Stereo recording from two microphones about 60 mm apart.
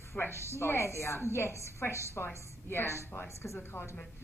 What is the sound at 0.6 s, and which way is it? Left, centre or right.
A woman's voice, left.